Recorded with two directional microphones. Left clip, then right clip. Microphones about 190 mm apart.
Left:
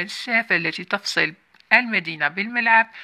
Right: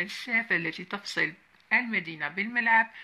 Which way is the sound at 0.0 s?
35° left (ahead or behind).